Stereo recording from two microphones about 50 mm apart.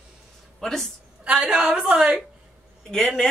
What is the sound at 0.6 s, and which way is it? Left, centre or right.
Speech, centre.